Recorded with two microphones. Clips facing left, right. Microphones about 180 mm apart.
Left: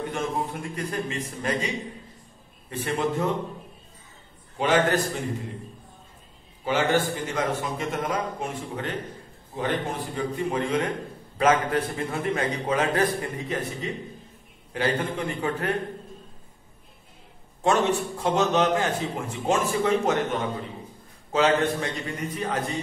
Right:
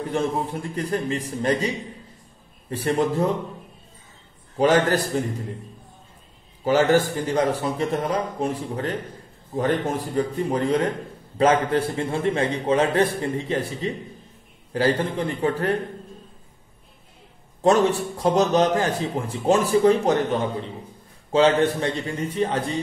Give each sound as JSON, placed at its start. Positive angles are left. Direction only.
{"t": 0.1, "sound": "a man's voice", "side_deg": -35}
{"t": 2.7, "sound": "a man's voice", "side_deg": -35}
{"t": 4.6, "sound": "a man's voice", "side_deg": -40}
{"t": 6.6, "sound": "a man's voice", "side_deg": -40}
{"t": 10.1, "sound": "a man's voice", "side_deg": -40}
{"t": 17.6, "sound": "a man's voice", "side_deg": -35}